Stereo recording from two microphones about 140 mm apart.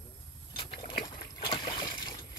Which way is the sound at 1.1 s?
35° left (ahead or behind).